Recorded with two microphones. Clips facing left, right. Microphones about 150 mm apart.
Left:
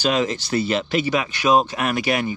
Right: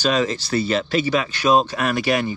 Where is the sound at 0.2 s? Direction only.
20° left (ahead or behind).